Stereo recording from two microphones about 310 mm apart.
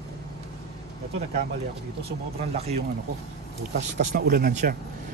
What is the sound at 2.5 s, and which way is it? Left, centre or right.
Speech, centre.